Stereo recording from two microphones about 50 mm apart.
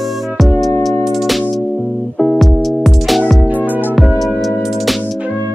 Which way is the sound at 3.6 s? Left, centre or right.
Right.